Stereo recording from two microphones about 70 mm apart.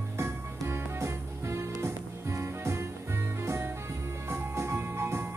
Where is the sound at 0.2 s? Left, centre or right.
Right.